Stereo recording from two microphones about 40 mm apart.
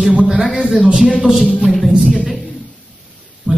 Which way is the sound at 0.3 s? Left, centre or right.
Centre.